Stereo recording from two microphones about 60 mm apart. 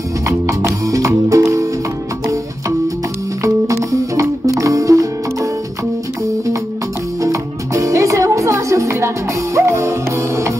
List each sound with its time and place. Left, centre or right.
0.5 s music: right
3.4 s music: right
7.2 s music: right